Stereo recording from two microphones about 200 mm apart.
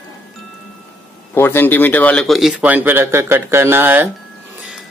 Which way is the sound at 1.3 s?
10° left (ahead or behind).